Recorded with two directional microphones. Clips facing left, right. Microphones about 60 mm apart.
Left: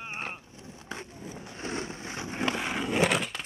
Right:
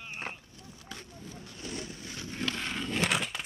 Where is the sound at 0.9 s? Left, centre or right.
Left.